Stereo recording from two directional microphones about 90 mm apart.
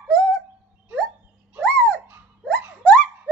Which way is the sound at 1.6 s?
15° left (ahead or behind).